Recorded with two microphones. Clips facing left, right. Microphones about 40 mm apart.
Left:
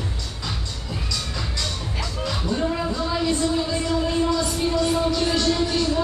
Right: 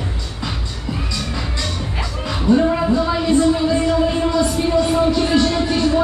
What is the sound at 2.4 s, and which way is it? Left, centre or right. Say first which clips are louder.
Music: right 11 dB; right.